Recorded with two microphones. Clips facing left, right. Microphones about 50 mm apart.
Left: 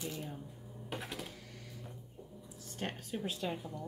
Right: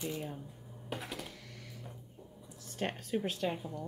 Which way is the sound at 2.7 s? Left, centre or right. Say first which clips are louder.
Right 5 dB; right.